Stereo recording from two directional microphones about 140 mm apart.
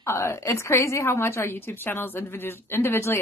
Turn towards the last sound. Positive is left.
turn(degrees=15)  # may be behind; listen again after turning